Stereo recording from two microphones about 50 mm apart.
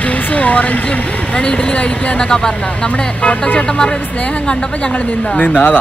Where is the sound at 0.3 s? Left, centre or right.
Left.